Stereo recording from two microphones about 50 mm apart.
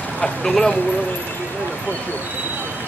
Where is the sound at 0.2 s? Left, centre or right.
Centre.